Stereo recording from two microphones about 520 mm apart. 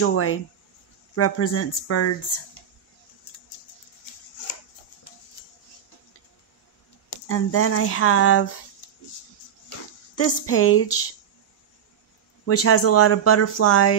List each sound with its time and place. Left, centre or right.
0.0 s speech: left
7.2 s speech: left
10.1 s speech: left
12.4 s speech: left